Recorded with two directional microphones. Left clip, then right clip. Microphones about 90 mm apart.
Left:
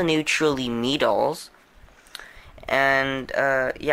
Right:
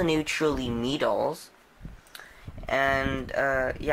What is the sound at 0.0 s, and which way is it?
Speech, 15° left (ahead or behind).